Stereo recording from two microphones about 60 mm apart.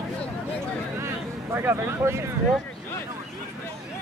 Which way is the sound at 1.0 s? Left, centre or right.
Right.